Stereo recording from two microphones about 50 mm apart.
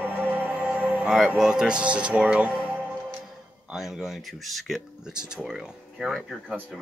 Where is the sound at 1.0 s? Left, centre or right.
Centre; by 2.7 s right.